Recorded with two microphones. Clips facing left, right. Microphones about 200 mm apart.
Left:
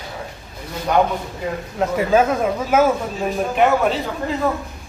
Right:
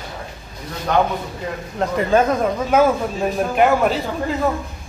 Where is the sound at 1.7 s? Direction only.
5° left (ahead or behind).